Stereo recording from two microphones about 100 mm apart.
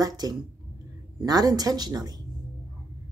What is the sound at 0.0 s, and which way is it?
Speech, 40° right (ahead or behind).